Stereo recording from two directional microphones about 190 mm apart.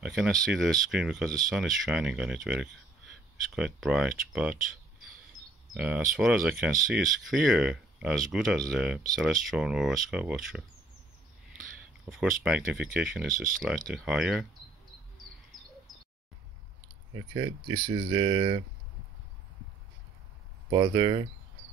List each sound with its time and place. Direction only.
0.0 s speech: centre (ahead or behind)
5.8 s speech: 5° right (ahead or behind)
12.1 s speech: 5° right (ahead or behind)
17.1 s speech: 20° right (ahead or behind)
20.7 s speech: 25° right (ahead or behind)